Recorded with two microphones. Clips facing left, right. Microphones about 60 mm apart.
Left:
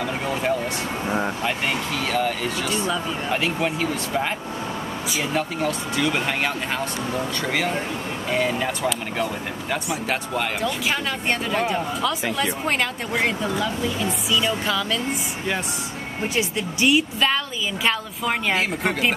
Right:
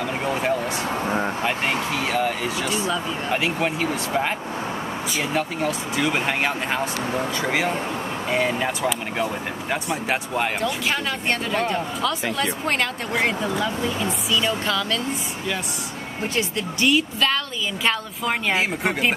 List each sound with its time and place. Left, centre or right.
0.0 s a sound: centre
1.4 s speech: centre
10.6 s speech: centre
16.3 s speech: centre
17.8 s speech: centre